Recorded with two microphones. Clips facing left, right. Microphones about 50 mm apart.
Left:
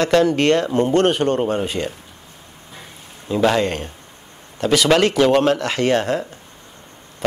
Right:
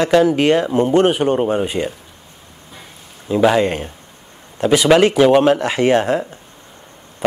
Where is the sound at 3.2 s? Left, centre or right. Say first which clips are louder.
Right 3 dB; centre.